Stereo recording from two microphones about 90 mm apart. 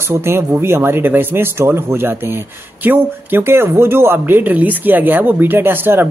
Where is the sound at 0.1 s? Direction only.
30° right (ahead or behind).